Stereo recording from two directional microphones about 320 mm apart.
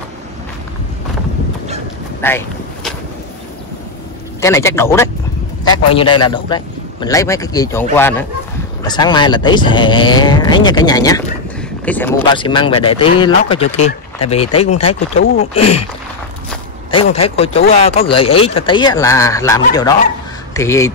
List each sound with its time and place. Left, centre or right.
2.2 s vehicle: centre
4.4 s speech: centre
17.1 s speech: centre